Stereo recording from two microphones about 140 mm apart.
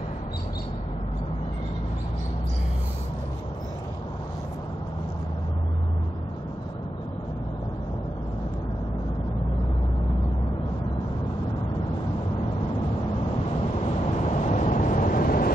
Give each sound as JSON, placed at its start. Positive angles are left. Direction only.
{"t": 14.3, "sound": "vehicle", "side_deg": 55}